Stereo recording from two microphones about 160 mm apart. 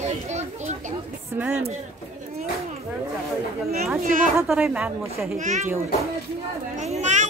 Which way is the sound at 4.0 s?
60° right (ahead or behind).